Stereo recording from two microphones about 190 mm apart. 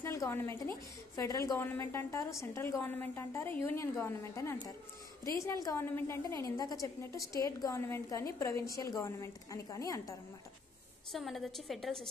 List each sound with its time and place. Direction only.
0.0 s a woman's voice: 15° left (ahead or behind)
11.1 s a woman's voice: centre (ahead or behind)